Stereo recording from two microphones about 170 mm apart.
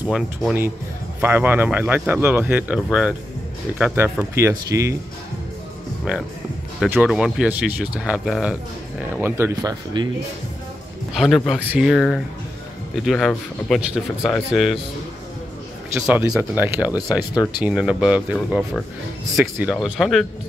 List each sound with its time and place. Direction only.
0.0 s speech: 5° right (ahead or behind)
6.1 s speech: 5° right (ahead or behind); by 10.0 s 20° right (ahead or behind)
11.1 s speech: centre (ahead or behind)
16.3 s speech: 10° right (ahead or behind)
17.3 s speech: 25° left (ahead or behind)
17.6 s speech: 5° right (ahead or behind)